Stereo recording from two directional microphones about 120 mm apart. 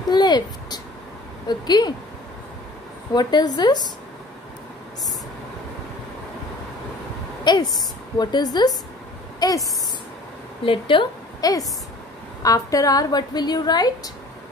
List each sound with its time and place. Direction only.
0.1 s a woman's voice: 35° left (ahead or behind)
3.2 s a woman's voice: 35° left (ahead or behind)
7.5 s a woman's voice: 35° left (ahead or behind)
10.6 s a woman's voice: 45° left (ahead or behind)
12.4 s a woman's voice: 30° left (ahead or behind)